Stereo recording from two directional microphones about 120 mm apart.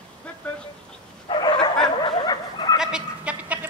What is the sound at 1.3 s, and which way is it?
Bow-wow, 40° left (ahead or behind).